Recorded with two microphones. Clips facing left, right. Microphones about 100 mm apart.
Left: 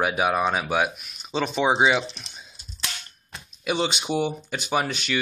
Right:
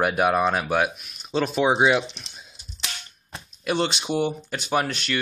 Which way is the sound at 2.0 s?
20° right (ahead or behind).